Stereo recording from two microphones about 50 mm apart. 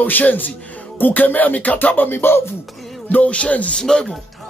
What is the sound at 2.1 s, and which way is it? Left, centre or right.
Speech, left.